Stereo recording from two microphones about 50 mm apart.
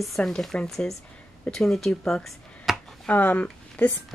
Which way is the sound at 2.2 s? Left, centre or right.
Centre.